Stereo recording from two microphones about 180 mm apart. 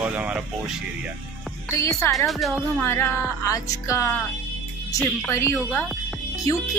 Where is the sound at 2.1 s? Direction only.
Centre (ahead or behind).